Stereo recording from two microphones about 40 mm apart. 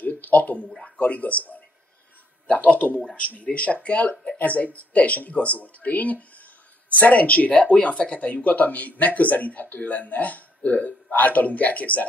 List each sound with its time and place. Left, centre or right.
0.0 s a sound: left
0.8 s speech: left
3.0 s a man's voice: left